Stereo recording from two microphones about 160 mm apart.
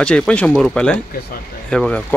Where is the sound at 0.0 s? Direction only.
5° left (ahead or behind).